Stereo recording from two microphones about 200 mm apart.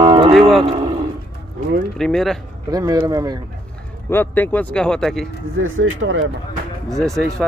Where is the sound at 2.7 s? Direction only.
20° right (ahead or behind).